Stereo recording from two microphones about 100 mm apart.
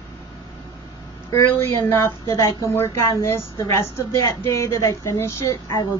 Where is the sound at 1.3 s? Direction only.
25° left (ahead or behind).